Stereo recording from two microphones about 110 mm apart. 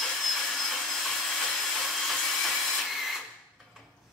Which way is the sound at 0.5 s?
Centre (ahead or behind).